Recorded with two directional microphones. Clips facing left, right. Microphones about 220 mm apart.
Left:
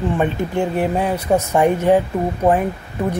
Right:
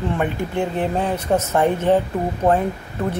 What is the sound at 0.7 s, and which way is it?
A woman's voice, 10° left (ahead or behind).